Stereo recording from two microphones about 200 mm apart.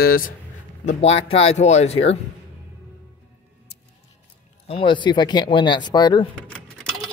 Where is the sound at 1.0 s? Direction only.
30° left (ahead or behind).